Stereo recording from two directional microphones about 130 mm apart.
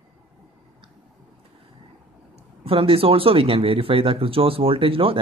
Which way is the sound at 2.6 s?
45° right (ahead or behind).